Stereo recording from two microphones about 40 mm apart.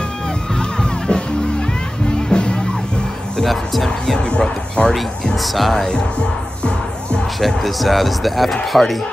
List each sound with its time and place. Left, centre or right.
0.6 s music: centre
2.2 s music: left
3.4 s speech: centre
4.0 s speech: centre
5.3 s speech: centre
7.3 s speech: centre